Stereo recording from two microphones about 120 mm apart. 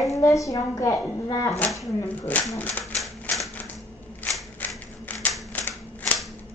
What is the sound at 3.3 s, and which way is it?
Typewriter, 15° left (ahead or behind).